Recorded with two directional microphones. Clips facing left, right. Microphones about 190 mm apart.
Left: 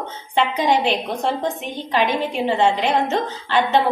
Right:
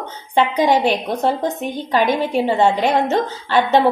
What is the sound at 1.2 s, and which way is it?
A woman's voice, 40° right (ahead or behind).